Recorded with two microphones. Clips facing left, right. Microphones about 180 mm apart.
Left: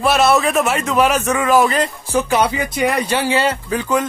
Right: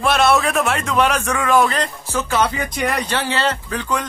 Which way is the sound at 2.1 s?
15° left (ahead or behind).